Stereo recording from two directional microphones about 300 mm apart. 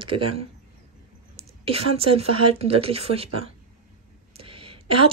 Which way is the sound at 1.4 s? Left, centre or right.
Centre.